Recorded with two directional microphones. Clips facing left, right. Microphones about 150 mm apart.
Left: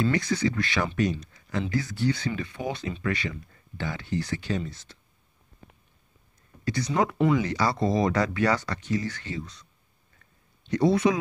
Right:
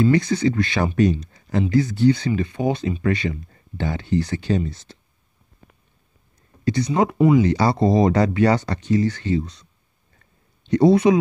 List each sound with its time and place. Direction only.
0.0 s speech: 20° right (ahead or behind)
6.6 s speech: 20° right (ahead or behind)
7.2 s speech: 10° right (ahead or behind)
7.4 s speech: 25° right (ahead or behind)
10.7 s speech: 25° right (ahead or behind)